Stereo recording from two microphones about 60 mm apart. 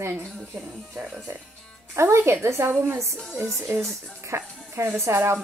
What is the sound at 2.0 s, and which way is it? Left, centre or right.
A woman's voice, right.